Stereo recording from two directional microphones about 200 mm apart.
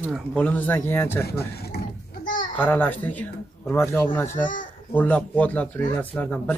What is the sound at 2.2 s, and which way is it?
Children playing, 40° left (ahead or behind).